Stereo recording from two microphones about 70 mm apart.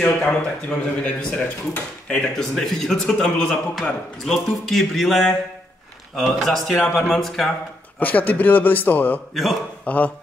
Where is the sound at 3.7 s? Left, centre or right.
Centre.